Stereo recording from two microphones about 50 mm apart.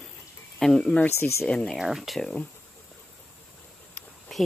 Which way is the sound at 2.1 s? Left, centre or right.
Centre.